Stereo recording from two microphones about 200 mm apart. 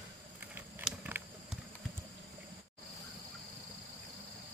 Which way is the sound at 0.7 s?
10° right (ahead or behind).